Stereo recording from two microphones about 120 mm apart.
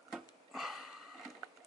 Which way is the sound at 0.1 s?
Centre (ahead or behind).